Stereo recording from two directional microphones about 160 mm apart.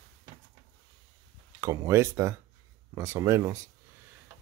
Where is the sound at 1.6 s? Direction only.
20° right (ahead or behind).